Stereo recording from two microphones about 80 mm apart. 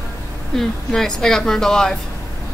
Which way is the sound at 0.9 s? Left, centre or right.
Centre.